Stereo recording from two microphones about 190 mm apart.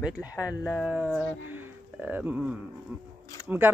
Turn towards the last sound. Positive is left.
turn(degrees=-5)  # may be behind; listen again after turning